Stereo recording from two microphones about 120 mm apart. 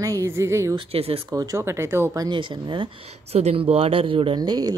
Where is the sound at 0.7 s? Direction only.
55° right (ahead or behind).